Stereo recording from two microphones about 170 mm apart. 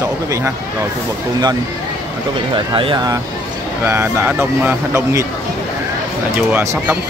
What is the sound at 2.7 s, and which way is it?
Speech, 30° right (ahead or behind).